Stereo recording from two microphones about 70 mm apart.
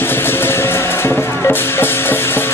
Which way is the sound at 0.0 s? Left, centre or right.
Left.